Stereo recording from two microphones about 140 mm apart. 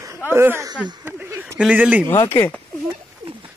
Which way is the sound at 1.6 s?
10° right (ahead or behind).